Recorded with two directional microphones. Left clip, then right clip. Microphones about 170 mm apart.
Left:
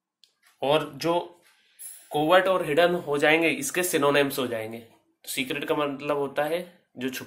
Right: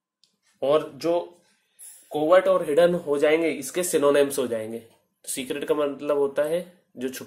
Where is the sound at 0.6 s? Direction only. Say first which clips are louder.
Right 2 dB; 25° right (ahead or behind).